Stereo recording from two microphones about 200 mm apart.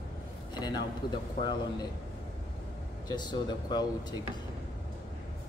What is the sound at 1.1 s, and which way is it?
Speech, 20° left (ahead or behind).